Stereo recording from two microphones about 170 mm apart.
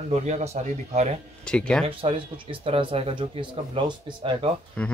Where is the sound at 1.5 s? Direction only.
5° left (ahead or behind).